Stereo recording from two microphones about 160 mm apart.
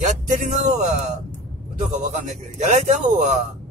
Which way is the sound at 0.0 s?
55° right (ahead or behind).